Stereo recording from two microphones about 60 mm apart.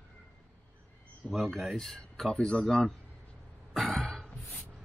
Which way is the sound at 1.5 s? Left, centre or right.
Centre.